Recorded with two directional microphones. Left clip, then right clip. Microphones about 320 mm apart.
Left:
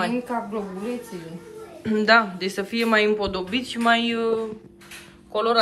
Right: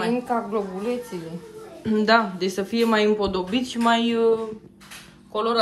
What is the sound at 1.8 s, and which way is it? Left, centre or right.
Speech, centre.